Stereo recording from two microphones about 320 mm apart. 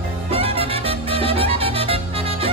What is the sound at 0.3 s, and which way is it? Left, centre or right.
Music, centre.